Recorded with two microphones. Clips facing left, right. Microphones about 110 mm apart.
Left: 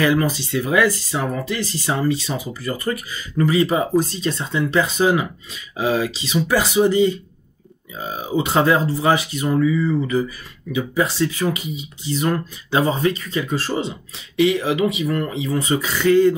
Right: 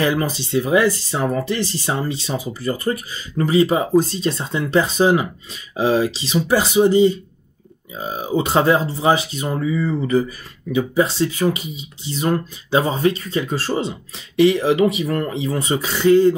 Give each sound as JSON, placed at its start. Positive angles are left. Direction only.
{"t": 0.2, "sound": "speech", "side_deg": -25}
{"t": 8.4, "sound": "speech", "side_deg": -30}
{"t": 11.1, "sound": "speech", "side_deg": -30}